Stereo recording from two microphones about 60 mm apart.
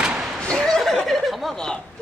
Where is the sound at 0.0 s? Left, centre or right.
Centre.